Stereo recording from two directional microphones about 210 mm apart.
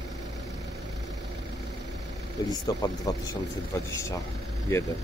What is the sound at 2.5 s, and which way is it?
Speech, 15° left (ahead or behind).